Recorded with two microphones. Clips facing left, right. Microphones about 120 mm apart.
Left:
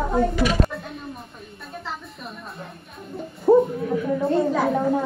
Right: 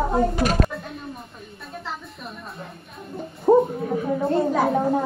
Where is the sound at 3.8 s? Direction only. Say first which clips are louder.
Left 1 dB; 40° right (ahead or behind).